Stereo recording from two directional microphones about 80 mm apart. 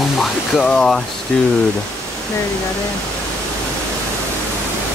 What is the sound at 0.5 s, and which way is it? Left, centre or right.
Speech, centre.